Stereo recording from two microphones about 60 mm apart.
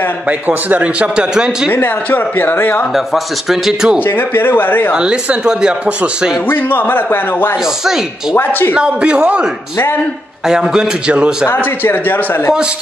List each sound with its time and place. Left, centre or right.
0.3 s speech: right; by 1.7 s centre
1.7 s a man's voice: left
3.4 s speech: centre
4.0 s a man's voice: left
4.9 s speech: centre
6.5 s a man's voice: left
7.8 s speech: centre
8.4 s a man's voice: left
8.7 s speech: centre
11.4 s a man's voice: left